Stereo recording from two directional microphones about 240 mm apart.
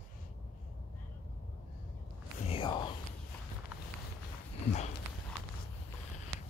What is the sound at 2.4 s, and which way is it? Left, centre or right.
Whispering, left.